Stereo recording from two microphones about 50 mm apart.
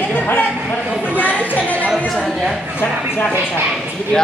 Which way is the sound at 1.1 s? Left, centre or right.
Left.